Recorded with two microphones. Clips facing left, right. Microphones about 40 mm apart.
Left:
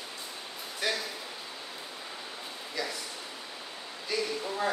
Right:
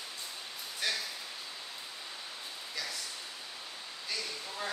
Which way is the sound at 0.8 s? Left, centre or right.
Centre.